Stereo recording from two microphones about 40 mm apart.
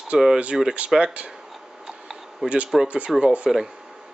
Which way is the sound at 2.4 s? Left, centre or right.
Right.